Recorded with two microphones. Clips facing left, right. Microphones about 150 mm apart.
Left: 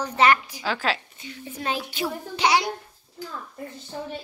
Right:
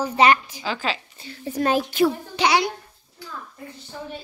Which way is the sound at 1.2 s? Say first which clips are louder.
Right 8 dB; 40° right (ahead or behind).